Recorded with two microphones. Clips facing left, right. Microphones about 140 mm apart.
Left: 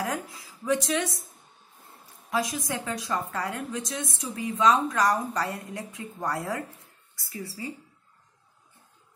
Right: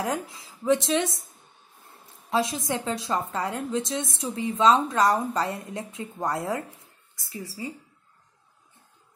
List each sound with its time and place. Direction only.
0.0 s a woman's voice: 25° right (ahead or behind)
2.3 s a woman's voice: 25° right (ahead or behind)